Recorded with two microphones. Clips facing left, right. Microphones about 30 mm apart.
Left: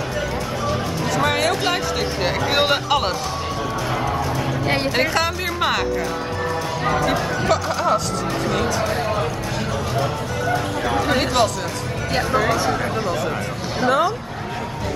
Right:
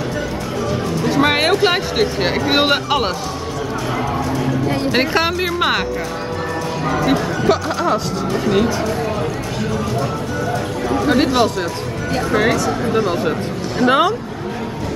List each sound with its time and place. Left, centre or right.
1.1 s music: right
1.5 s speech: right
4.9 s speech: right
6.9 s speech: centre
11.1 s speech: centre
12.9 s speech: right
13.8 s speech: right